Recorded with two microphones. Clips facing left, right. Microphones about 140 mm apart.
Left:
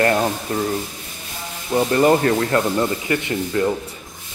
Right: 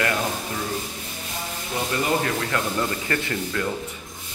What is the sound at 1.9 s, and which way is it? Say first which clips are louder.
Speech: left 8 dB; 45° left (ahead or behind).